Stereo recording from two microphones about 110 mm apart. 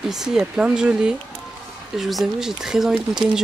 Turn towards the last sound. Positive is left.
turn(degrees=-5)  # may be behind; listen again after turning